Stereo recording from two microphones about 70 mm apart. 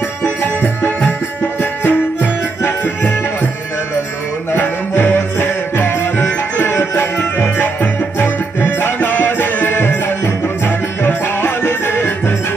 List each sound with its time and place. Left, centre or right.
0.6 s music: left
4.5 s music: left